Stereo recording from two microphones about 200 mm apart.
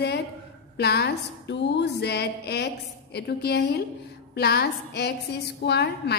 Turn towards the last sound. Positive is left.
turn(degrees=55)  # may be behind; listen again after turning